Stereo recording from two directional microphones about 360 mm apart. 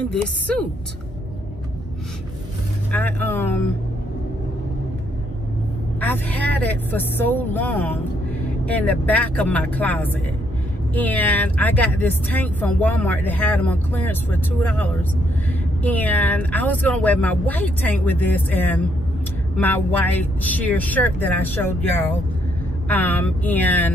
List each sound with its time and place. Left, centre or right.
2.9 s speech: centre
5.9 s speech: centre
22.8 s speech: centre